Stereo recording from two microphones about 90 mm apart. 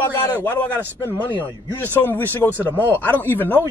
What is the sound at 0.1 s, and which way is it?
A man's voice, 25° left (ahead or behind).